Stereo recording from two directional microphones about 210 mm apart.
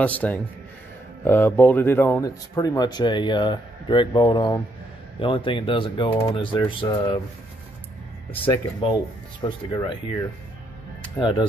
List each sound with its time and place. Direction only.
0.0 s a man's voice: 5° left (ahead or behind); by 7.2 s 20° left (ahead or behind)
9.4 s speech: 20° left (ahead or behind)